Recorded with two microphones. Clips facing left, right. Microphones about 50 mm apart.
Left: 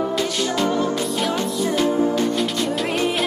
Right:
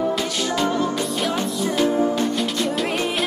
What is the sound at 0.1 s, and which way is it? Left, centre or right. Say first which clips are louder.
Music: left 1 dB; centre.